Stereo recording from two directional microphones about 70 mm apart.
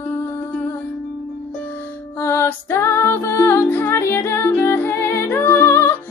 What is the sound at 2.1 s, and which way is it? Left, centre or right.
Music, left.